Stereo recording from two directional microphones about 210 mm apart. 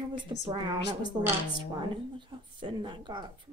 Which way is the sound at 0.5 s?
20° right (ahead or behind).